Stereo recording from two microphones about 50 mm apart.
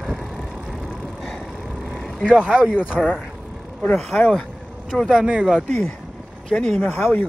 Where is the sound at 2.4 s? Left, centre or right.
Right.